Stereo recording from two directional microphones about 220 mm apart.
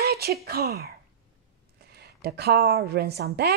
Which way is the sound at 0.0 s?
45° right (ahead or behind).